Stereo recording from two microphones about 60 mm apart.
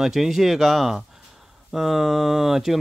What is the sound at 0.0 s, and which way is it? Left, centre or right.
Speech, centre.